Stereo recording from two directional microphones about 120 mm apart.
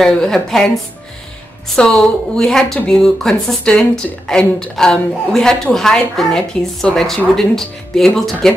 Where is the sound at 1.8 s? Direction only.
5° left (ahead or behind).